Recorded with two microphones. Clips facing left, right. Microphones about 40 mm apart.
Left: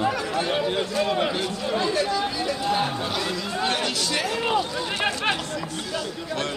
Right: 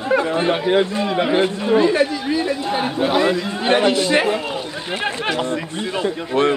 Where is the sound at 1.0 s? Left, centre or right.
Centre.